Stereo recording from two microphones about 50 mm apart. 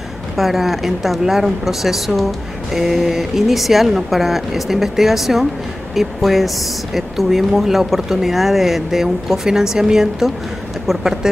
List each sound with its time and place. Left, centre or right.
0.4 s speech: centre